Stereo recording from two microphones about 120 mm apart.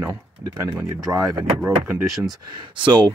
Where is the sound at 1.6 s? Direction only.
15° right (ahead or behind).